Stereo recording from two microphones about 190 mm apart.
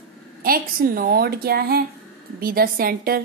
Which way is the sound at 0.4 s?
50° right (ahead or behind).